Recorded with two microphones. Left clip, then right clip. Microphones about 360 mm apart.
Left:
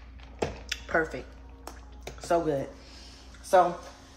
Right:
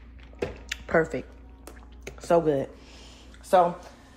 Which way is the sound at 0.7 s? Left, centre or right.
Centre.